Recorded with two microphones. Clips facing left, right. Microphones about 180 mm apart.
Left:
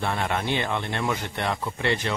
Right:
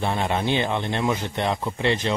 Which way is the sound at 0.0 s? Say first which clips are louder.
Right 3 dB; 20° right (ahead or behind).